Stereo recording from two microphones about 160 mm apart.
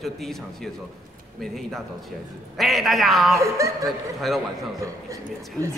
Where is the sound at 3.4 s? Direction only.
20° right (ahead or behind).